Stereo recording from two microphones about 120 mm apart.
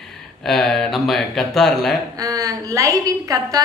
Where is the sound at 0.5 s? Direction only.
5° left (ahead or behind).